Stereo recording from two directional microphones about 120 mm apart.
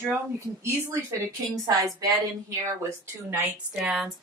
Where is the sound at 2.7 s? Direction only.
20° right (ahead or behind).